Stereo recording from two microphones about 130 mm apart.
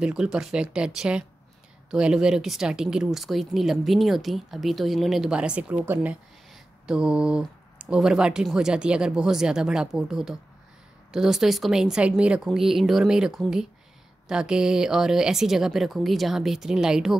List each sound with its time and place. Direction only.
0.0 s speech: 5° right (ahead or behind)